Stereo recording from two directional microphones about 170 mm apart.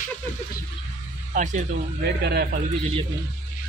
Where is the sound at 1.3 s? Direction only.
45° right (ahead or behind).